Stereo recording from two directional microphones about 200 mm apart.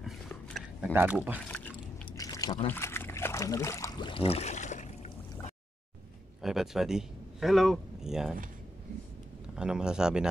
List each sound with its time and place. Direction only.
0.3 s a sound: centre (ahead or behind)
0.9 s speech: 5° right (ahead or behind)
2.0 s a sound: 20° left (ahead or behind)
2.7 s boat: 10° left (ahead or behind); by 5.1 s 35° left (ahead or behind)
6.4 s speech: centre (ahead or behind)
9.6 s a man's voice: 5° right (ahead or behind)